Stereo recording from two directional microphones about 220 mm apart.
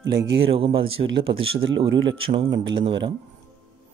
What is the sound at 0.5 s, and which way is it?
Speech, 25° right (ahead or behind).